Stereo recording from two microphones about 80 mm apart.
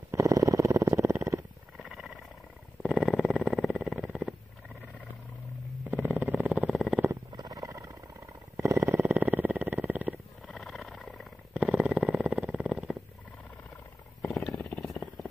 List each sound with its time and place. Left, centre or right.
0.1 s purr: right
1.8 s wild animals: centre
2.8 s purr: centre
5.9 s purr: right
6.7 s purr: centre
7.3 s purr: right; by 10.2 s centre
10.4 s a sound: centre
11.5 s purr: centre
14.2 s wild animals: centre
14.8 s purr: centre